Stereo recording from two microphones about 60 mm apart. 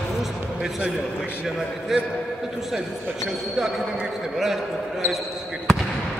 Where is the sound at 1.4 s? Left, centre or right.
Centre.